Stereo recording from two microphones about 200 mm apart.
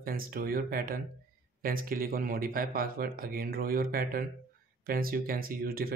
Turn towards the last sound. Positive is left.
turn(degrees=-50)  # may be behind; listen again after turning